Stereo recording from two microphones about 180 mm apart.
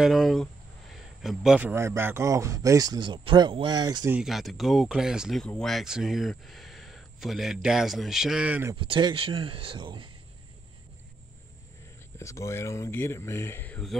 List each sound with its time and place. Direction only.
0.0 s speech: centre (ahead or behind); by 4.2 s 20° right (ahead or behind)
4.2 s speech: centre (ahead or behind)
8.7 s speech: 30° right (ahead or behind)
12.2 s speech: 15° left (ahead or behind)